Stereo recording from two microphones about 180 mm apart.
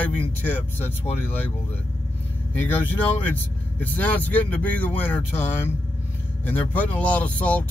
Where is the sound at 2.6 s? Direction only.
10° left (ahead or behind).